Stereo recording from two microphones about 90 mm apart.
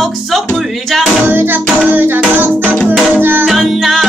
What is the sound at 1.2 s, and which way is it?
Music, 25° right (ahead or behind).